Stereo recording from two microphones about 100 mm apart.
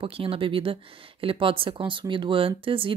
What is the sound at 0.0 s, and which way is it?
Speech, 65° right (ahead or behind).